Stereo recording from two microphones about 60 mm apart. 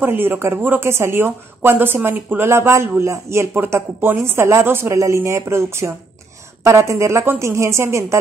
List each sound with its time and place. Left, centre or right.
0.0 s speech: right
0.8 s speech: right
2.4 s speech: right